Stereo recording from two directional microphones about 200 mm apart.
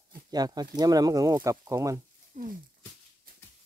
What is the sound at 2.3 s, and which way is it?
Speech, 40° right (ahead or behind).